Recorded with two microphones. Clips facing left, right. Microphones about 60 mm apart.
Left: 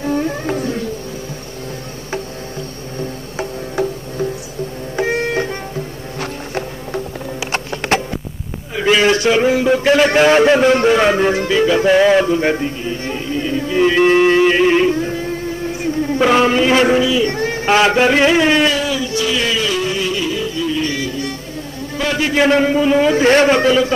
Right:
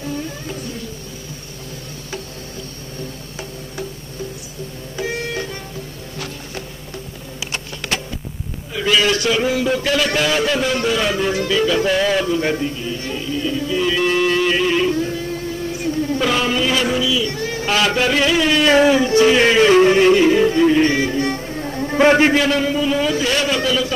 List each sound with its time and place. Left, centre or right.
0.0 s a sound: left
4.9 s music: left
7.5 s a sound: left
8.7 s a man's voice: left
18.7 s music: right
22.4 s a man's voice: left